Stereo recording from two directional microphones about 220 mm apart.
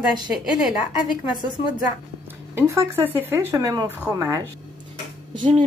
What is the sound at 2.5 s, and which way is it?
Speech, 10° right (ahead or behind).